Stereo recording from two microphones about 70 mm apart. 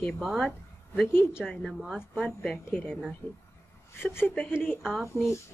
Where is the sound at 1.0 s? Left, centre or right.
Left.